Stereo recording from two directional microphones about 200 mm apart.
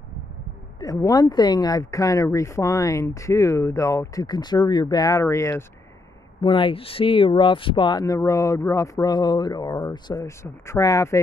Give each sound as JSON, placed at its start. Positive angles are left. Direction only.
{"t": 0.7, "sound": "speech", "side_deg": 20}
{"t": 6.4, "sound": "speech", "side_deg": 25}